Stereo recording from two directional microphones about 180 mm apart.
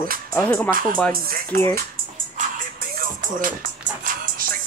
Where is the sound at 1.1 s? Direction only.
55° right (ahead or behind).